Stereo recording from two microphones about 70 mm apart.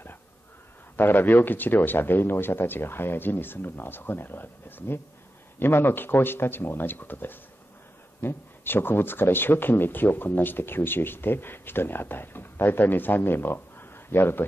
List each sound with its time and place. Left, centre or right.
0.9 s speech: left